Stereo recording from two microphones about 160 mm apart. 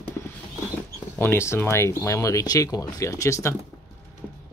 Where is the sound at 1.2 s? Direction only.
15° left (ahead or behind).